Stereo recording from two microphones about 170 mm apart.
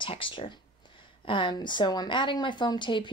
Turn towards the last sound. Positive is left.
turn(degrees=25)  # may be behind; listen again after turning